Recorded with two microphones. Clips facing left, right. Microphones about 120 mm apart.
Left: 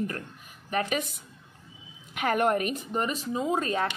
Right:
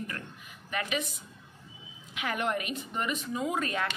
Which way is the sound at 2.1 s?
45° left (ahead or behind).